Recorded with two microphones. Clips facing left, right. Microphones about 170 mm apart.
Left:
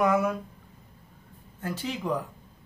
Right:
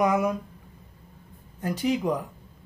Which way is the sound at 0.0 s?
15° right (ahead or behind).